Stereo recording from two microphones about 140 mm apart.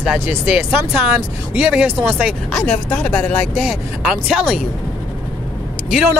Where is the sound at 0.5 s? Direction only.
5° right (ahead or behind).